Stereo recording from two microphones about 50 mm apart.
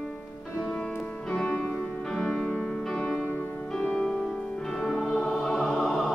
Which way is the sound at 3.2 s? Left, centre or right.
Left.